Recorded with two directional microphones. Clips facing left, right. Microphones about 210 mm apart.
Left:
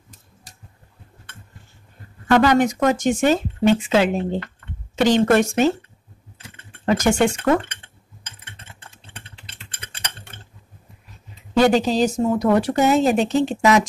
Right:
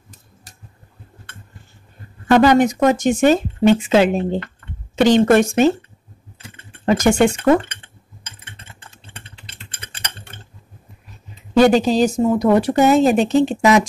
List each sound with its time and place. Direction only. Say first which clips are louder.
2.3 s speech: right 3 dB; 20° right (ahead or behind)
6.9 s speech: right 3 dB; 15° right (ahead or behind)
11.5 s speech: right 3 dB; 15° right (ahead or behind)